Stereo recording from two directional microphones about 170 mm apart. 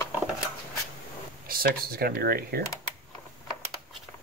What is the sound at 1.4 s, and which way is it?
Speech, 60° right (ahead or behind).